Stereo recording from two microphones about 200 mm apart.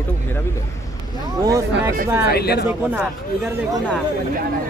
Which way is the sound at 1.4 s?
15° right (ahead or behind).